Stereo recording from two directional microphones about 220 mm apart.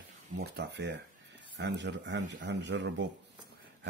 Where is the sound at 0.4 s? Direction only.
50° right (ahead or behind).